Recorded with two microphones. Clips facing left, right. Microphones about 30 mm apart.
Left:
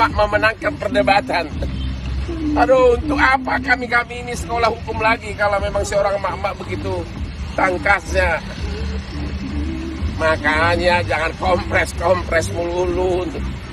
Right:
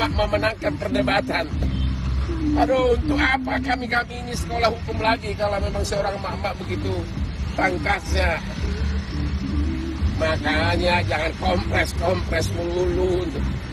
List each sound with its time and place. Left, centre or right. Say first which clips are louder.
0.0 s speech: left 6 dB; left
2.5 s speech: left 6 dB; left
4.6 s speech: left 4 dB; left
5.4 s speech: left 6 dB; left
7.5 s speech: left 6 dB; left
10.1 s speech: left 6 dB; left
11.8 s speech: left 5 dB; left